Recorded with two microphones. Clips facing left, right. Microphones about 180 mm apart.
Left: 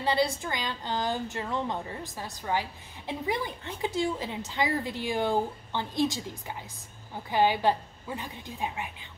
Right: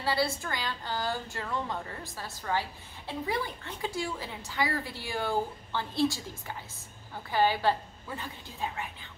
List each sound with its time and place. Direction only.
0.0 s a woman's voice: 20° left (ahead or behind)